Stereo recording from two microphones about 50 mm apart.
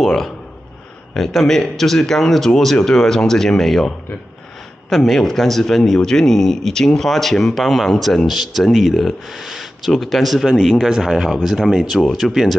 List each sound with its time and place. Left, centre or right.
0.0 s a man's voice: centre